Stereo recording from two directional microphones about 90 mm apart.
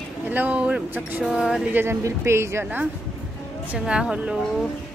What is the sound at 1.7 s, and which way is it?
Speech, 20° right (ahead or behind).